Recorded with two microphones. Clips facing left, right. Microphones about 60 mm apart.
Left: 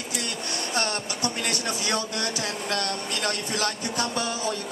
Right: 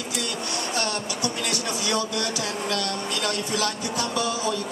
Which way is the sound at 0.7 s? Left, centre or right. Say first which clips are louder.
Left 2 dB; left.